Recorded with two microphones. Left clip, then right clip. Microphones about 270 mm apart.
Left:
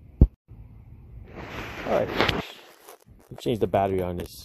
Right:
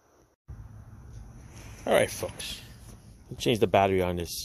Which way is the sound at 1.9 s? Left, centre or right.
Right.